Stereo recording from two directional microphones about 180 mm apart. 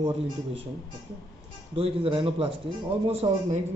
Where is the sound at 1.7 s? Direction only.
30° right (ahead or behind).